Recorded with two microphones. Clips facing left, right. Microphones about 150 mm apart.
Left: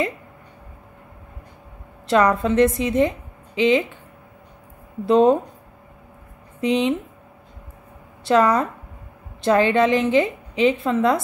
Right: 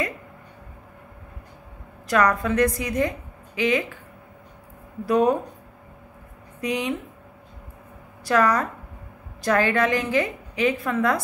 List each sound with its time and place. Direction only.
2.0 s a woman's voice: 25° left (ahead or behind)
5.0 s a woman's voice: 25° left (ahead or behind)
6.6 s a woman's voice: 25° left (ahead or behind)
8.2 s a woman's voice: 25° left (ahead or behind)